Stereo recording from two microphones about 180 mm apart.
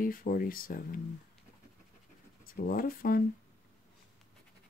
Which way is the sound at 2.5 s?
55° left (ahead or behind).